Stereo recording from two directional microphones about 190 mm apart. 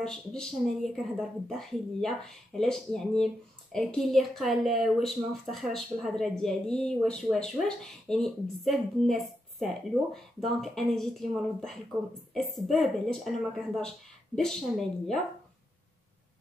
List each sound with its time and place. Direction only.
0.0 s speech: 5° left (ahead or behind)